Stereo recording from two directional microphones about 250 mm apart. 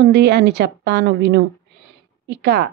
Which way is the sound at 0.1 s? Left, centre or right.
Right.